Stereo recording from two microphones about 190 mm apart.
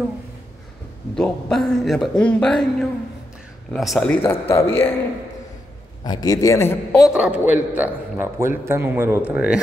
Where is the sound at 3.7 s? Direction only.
Centre (ahead or behind).